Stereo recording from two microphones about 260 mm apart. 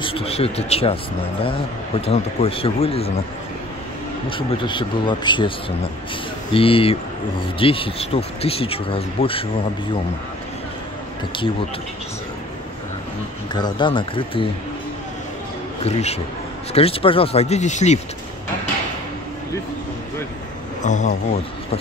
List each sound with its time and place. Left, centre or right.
0.0 s speech: left
2.0 s speech: left
4.3 s speech: centre
6.5 s speech: left
13.5 s speech: centre
15.8 s speech: left
20.8 s speech: left